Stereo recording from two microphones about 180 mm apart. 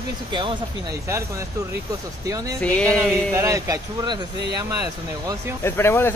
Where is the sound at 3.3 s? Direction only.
15° right (ahead or behind).